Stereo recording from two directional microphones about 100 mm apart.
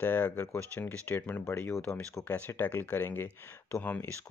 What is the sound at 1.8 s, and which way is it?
Speech, 10° left (ahead or behind).